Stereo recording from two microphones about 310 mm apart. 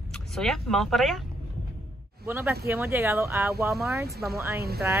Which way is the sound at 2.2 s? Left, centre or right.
Centre.